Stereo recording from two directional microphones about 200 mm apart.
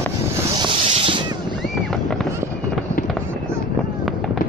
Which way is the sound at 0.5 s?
25° right (ahead or behind).